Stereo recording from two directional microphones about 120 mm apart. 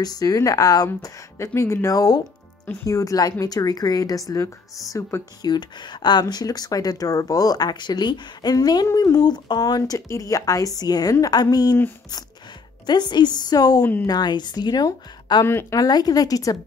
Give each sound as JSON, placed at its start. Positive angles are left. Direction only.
{"t": 0.0, "sound": "a woman's voice", "side_deg": 30}
{"t": 12.8, "sound": "a woman's voice", "side_deg": 35}